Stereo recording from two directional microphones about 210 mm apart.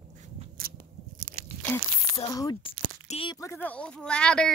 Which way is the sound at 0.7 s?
45° right (ahead or behind).